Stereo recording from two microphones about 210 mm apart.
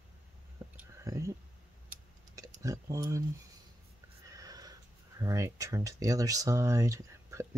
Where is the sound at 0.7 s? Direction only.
15° right (ahead or behind).